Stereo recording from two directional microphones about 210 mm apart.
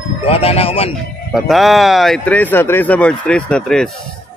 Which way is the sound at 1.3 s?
Centre (ahead or behind).